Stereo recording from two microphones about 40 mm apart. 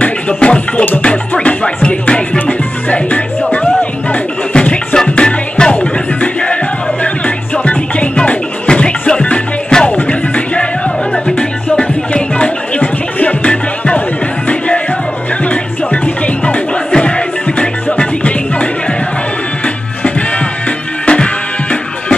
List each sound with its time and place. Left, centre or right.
0.0 s music: left
4.6 s music: left
11.7 s music: left
12.8 s music: left
15.4 s music: left
17.9 s music: left
20.0 s music: left